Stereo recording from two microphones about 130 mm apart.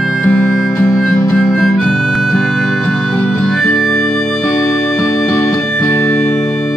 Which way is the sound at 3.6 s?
15° left (ahead or behind).